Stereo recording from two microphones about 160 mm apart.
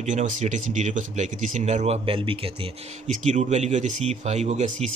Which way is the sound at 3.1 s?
50° right (ahead or behind).